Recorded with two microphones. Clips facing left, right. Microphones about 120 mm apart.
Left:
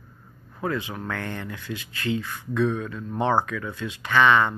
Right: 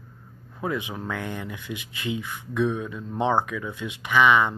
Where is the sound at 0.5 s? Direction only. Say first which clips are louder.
Left 1 dB; 15° right (ahead or behind).